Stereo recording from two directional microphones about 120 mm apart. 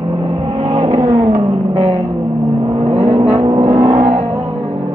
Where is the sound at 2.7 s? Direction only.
55° right (ahead or behind).